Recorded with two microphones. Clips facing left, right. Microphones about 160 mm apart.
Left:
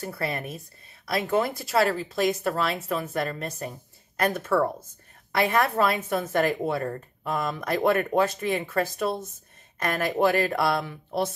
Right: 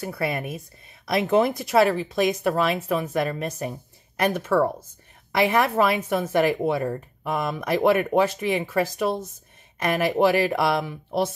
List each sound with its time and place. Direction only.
0.2 s a woman's voice: 10° right (ahead or behind)
5.3 s a woman's voice: 15° right (ahead or behind)